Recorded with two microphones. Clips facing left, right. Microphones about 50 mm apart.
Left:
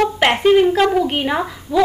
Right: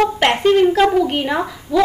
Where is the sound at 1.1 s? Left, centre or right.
Centre.